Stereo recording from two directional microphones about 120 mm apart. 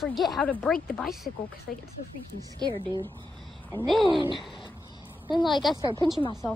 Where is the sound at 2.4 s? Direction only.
35° right (ahead or behind).